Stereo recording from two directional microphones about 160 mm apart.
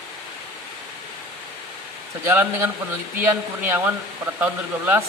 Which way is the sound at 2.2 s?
15° right (ahead or behind).